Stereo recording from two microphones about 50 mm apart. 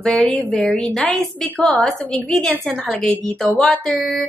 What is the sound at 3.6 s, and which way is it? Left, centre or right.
Speech, centre.